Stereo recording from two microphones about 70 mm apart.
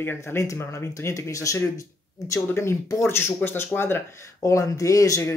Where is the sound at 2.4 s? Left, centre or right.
Left.